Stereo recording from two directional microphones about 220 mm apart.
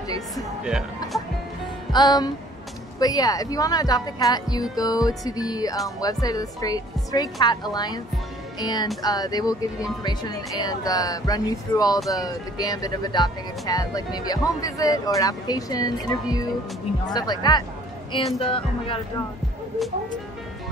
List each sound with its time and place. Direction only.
0.7 s speech: centre (ahead or behind)
1.9 s music: 20° left (ahead or behind)
3.0 s speech: 15° left (ahead or behind)